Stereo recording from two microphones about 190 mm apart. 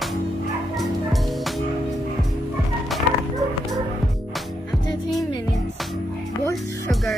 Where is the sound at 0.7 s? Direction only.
Centre (ahead or behind).